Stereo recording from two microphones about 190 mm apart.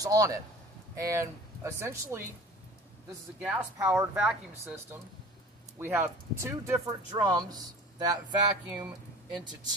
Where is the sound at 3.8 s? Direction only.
15° right (ahead or behind).